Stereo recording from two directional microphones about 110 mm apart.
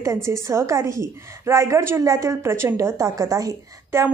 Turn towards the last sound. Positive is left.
turn(degrees=-25)  # may be behind; listen again after turning